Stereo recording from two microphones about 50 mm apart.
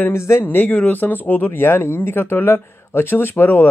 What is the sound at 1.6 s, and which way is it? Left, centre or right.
Speech, left.